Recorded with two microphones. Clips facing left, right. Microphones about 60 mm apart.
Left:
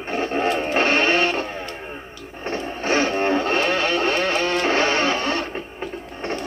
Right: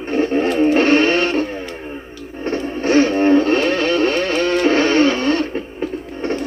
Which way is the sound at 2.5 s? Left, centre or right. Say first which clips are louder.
Right 6 dB; left.